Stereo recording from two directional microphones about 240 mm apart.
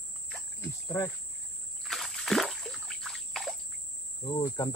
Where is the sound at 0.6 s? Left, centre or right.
Centre.